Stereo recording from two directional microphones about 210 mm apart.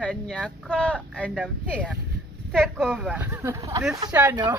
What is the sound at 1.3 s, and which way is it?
Speech, 5° right (ahead or behind).